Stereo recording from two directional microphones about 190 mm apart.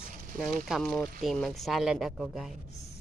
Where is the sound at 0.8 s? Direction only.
5° left (ahead or behind).